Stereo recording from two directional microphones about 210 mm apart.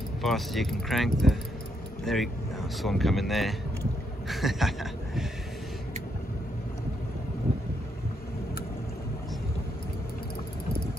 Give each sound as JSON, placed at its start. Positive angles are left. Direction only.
{"t": 0.2, "sound": "speech", "side_deg": 0}